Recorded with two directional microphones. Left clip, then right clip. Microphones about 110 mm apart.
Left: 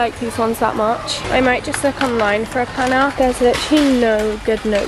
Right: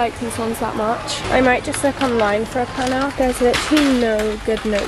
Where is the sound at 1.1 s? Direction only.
15° right (ahead or behind).